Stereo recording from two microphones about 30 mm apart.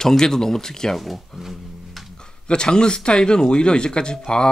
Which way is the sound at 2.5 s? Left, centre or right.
Left.